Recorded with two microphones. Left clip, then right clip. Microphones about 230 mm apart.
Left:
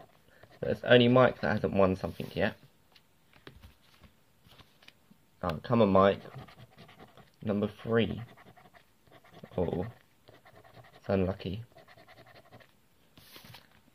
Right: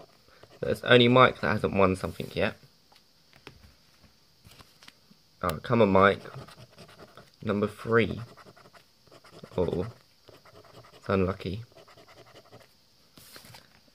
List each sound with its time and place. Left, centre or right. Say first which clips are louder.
0.5 s speech: right 2 dB; centre
5.4 s speech: right 3 dB; centre
9.1 s a sound: right 4 dB; centre
10.4 s pant: right 3 dB; centre